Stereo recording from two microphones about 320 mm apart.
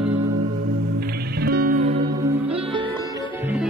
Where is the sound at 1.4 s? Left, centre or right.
Right.